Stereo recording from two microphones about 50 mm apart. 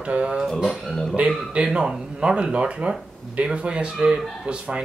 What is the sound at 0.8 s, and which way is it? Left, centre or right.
Speech, centre.